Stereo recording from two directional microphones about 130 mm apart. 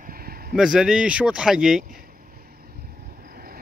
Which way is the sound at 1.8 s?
90° right.